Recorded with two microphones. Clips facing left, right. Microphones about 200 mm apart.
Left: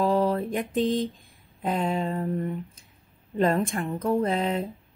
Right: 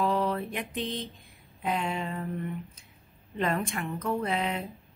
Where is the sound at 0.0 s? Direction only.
30° left (ahead or behind).